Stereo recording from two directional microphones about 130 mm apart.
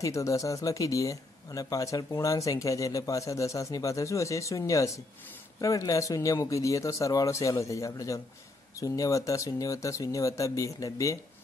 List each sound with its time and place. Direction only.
0.0 s speech: 25° left (ahead or behind)